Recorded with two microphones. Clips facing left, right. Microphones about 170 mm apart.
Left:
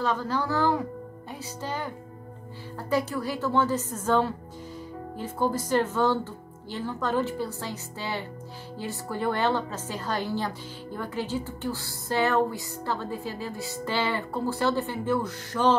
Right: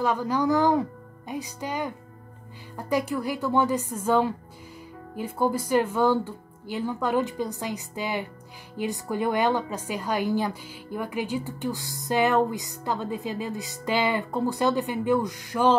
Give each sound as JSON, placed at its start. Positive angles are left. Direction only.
{"t": 0.0, "sound": "a woman's voice", "side_deg": -15}